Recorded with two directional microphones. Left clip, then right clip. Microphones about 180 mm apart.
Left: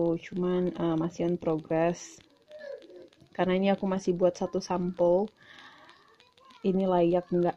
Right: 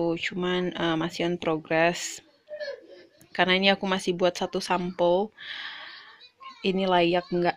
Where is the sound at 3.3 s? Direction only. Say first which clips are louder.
Right 5 dB; 5° left (ahead or behind).